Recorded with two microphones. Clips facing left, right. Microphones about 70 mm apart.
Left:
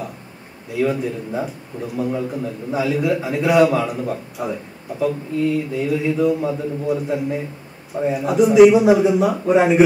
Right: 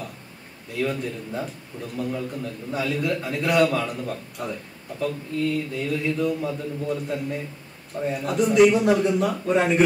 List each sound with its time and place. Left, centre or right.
0.7 s a man's voice: centre